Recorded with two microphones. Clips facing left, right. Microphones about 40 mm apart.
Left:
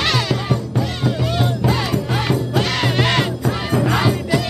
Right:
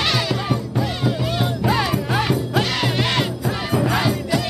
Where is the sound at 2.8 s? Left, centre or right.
Centre.